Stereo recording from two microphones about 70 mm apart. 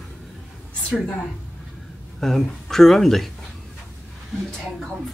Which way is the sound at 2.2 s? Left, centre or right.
Centre.